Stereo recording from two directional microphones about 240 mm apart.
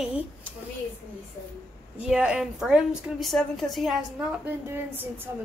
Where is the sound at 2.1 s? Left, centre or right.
Centre.